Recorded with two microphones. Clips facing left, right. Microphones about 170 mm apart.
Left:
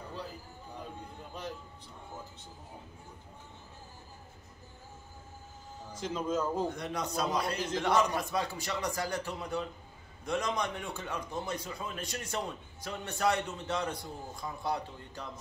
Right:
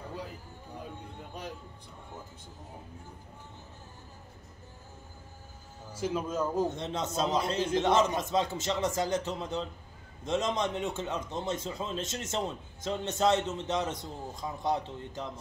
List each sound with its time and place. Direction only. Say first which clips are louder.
5.9 s speech: right 1 dB; 5° right (ahead or behind)
6.7 s a man's voice: right 2 dB; 25° right (ahead or behind)